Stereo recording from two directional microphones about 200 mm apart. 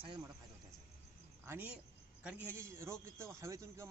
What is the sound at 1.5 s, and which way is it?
A man's voice, 10° right (ahead or behind).